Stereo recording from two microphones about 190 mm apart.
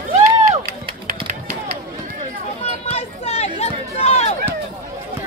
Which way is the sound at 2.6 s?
35° left (ahead or behind).